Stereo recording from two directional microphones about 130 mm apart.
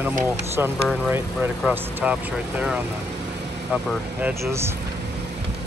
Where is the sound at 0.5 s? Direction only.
15° right (ahead or behind).